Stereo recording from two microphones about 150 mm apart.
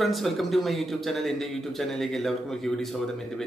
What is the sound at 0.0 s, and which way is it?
Speech, centre (ahead or behind).